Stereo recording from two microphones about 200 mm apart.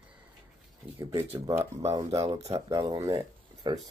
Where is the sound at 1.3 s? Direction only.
15° right (ahead or behind).